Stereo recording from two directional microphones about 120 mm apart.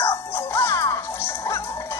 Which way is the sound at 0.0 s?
20° left (ahead or behind).